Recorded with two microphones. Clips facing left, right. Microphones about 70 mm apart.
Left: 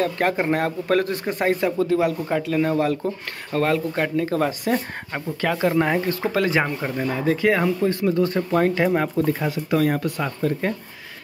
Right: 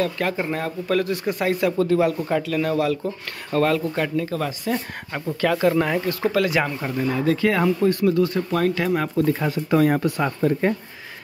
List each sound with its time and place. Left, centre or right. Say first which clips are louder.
0.2 s speech: left 3 dB; left
1.6 s speech: right 1 dB; left
3.9 s speech: left 1 dB; left
4.3 s speech: left 3 dB; left
5.1 s speech: right 2 dB; centre
5.9 s speech: right 1 dB; left
9.4 s speech: right 2 dB; centre
10.2 s speech: right 3 dB; centre